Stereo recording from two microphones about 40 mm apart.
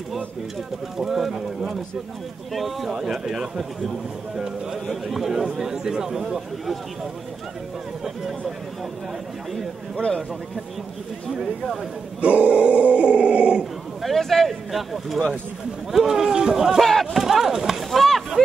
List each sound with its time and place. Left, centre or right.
0.9 s speech: centre
2.5 s speech: centre
5.0 s speech: centre
8.0 s speech: centre
12.2 s speech: right
14.0 s speech: centre
17.0 s chop: centre
17.9 s chop: centre